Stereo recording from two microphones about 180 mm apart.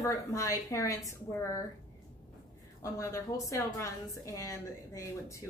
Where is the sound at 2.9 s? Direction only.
15° left (ahead or behind).